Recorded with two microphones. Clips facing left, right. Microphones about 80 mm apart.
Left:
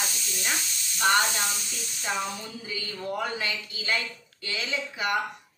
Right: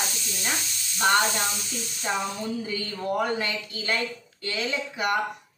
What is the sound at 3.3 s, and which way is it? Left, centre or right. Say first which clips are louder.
Speech: right 3 dB; right.